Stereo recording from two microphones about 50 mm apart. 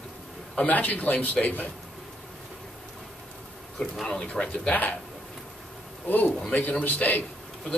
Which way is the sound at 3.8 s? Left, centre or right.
Centre.